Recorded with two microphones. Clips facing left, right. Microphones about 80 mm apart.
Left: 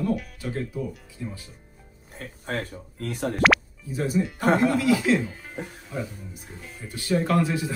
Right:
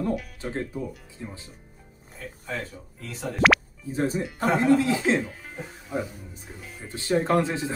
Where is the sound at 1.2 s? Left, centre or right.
Right.